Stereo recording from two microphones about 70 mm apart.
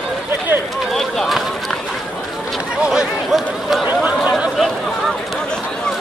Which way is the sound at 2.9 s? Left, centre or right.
Centre.